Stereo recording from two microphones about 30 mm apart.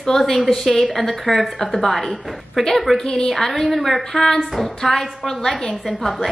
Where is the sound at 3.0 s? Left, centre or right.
Left.